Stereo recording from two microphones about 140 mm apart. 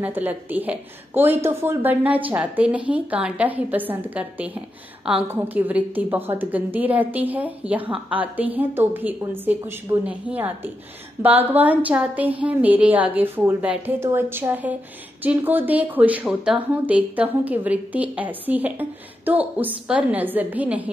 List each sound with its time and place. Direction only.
0.0 s a woman's voice: 10° right (ahead or behind)